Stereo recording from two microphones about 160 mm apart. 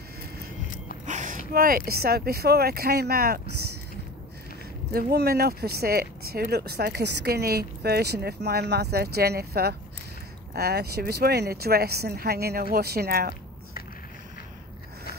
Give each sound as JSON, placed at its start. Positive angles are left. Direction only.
{"t": 1.0, "sound": "a sound", "side_deg": -50}
{"t": 1.5, "sound": "speech", "side_deg": -65}
{"t": 5.1, "sound": "speech", "side_deg": -80}